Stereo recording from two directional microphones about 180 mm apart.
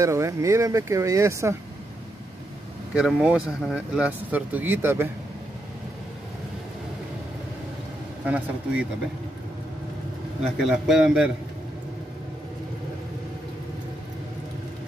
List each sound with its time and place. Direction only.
0.0 s speech: 15° right (ahead or behind)
2.9 s speech: 5° right (ahead or behind)
8.3 s speech: 5° right (ahead or behind)
10.4 s a man's voice: centre (ahead or behind)